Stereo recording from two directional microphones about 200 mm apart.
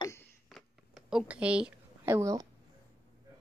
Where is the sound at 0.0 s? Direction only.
15° left (ahead or behind).